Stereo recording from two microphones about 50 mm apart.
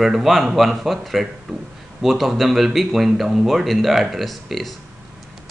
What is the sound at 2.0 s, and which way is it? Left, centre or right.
A man's voice, centre.